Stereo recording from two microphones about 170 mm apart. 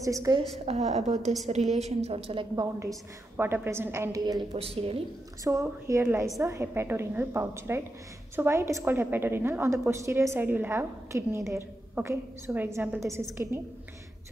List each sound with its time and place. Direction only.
0.0 s a woman's voice: 20° right (ahead or behind)
0.7 s a woman's voice: 40° right (ahead or behind)
2.5 s a woman's voice: 20° right (ahead or behind)
4.5 s a woman's voice: 35° right (ahead or behind)
5.4 s a woman's voice: 20° right (ahead or behind)